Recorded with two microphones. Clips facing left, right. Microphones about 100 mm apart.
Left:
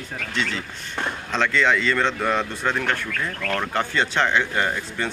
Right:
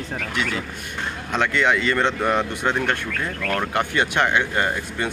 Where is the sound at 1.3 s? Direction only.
15° right (ahead or behind).